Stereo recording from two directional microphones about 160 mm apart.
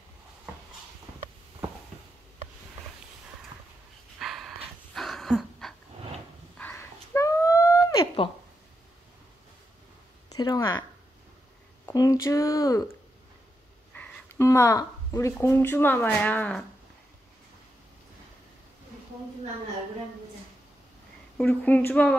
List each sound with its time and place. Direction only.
4.2 s dog: centre (ahead or behind)
6.6 s a sound: 15° left (ahead or behind)
10.3 s speech: 25° left (ahead or behind)
13.9 s a sound: 10° left (ahead or behind)
15.4 s speech: 15° left (ahead or behind)
21.4 s speech: 5° left (ahead or behind)